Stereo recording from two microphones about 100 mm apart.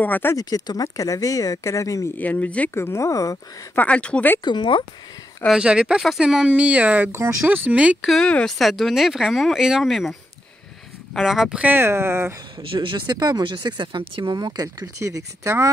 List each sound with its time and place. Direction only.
0.0 s speech: 20° left (ahead or behind)
0.4 s speech: 40° left (ahead or behind)
2.1 s speech: 15° left (ahead or behind)
2.7 s speech: 25° left (ahead or behind)
3.7 s speech: 15° left (ahead or behind)
4.5 s speech: 55° left (ahead or behind)
5.5 s speech: 10° right (ahead or behind)
8.1 s speech: 10° left (ahead or behind)
11.1 s speech: centre (ahead or behind)
11.6 s speech: 20° right (ahead or behind)
12.7 s speech: 55° right (ahead or behind); by 15.7 s 30° right (ahead or behind)